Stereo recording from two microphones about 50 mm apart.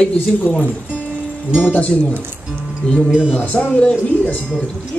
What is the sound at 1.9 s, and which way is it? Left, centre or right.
Music, left.